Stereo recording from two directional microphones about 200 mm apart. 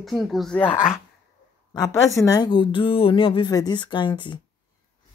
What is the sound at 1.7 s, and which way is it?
A woman's voice, 15° left (ahead or behind).